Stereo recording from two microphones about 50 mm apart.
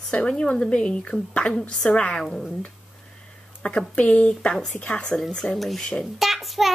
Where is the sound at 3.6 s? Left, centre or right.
Left.